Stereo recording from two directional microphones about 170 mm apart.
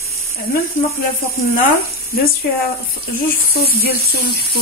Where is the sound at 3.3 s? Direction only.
60° left (ahead or behind).